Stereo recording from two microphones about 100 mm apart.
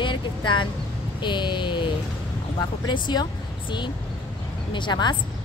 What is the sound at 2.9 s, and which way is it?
Speech, 50° left (ahead or behind).